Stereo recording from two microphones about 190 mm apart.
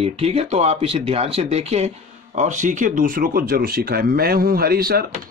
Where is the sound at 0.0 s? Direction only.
30° right (ahead or behind).